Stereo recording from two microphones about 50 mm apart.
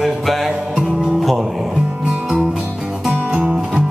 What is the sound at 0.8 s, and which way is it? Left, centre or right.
Music, centre.